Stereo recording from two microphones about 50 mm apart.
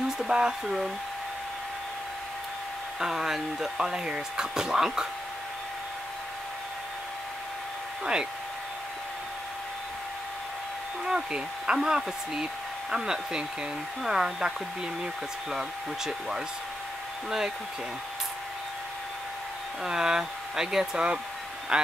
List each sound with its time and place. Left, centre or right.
0.3 s speech: centre
3.0 s speech: centre
8.0 s speech: centre
11.1 s speech: centre
16.1 s speech: centre
19.8 s speech: centre